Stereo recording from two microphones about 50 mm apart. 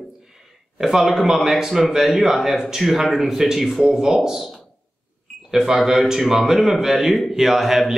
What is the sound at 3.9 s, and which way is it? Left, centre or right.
A man's voice, centre.